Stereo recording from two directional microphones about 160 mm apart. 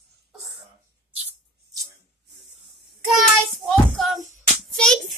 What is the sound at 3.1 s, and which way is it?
Child singing, centre (ahead or behind).